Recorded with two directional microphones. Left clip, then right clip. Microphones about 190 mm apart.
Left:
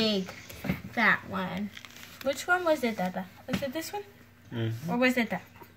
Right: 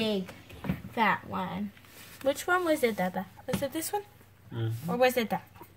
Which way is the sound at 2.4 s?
65° right (ahead or behind).